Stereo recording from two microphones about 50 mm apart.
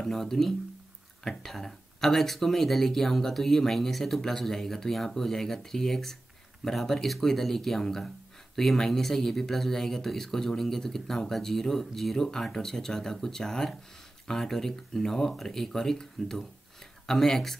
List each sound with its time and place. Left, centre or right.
0.0 s speech: centre